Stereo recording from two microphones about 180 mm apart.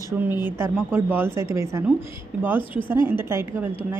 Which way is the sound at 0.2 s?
10° right (ahead or behind).